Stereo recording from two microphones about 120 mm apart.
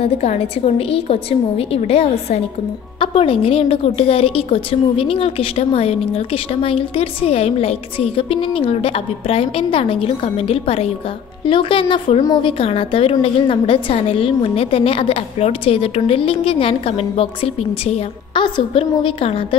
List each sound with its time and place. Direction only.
0.0 s a woman's voice: 60° left (ahead or behind)
3.0 s a woman's voice: 50° left (ahead or behind)
11.4 s a woman's voice: 45° left (ahead or behind)
12.2 s a woman's voice: 30° left (ahead or behind)
12.4 s a woman's voice: 50° left (ahead or behind)
18.3 s a woman's voice: 45° left (ahead or behind)